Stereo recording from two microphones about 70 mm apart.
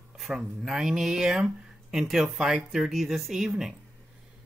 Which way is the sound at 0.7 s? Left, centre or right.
Centre.